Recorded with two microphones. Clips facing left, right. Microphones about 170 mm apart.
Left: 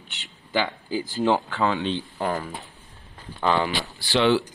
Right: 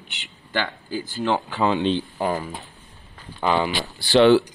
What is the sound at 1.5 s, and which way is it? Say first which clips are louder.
Speech: right 3 dB; 20° right (ahead or behind).